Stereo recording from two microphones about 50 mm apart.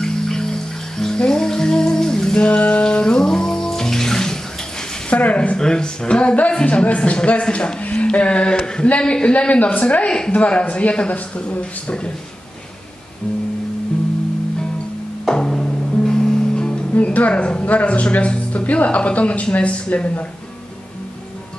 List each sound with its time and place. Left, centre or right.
0.0 s music: centre
2.4 s bathtub: left
5.1 s speech: left
15.2 s music: centre
16.9 s speech: left